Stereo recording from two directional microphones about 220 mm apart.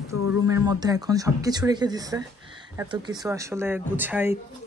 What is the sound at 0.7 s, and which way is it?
Speech, 15° right (ahead or behind).